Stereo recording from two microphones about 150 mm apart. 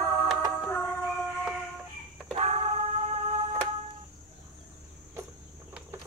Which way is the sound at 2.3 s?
50° right (ahead or behind).